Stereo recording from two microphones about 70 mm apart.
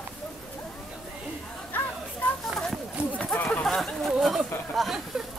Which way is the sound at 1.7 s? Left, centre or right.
Left.